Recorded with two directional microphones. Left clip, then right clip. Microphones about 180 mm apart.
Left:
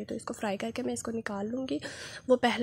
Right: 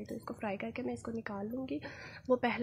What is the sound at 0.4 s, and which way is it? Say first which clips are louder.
A woman's voice: left 5 dB; 35° left (ahead or behind).